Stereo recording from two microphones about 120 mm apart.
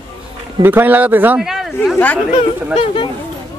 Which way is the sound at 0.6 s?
15° right (ahead or behind).